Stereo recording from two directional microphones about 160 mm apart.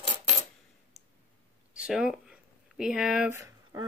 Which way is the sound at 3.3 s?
20° right (ahead or behind).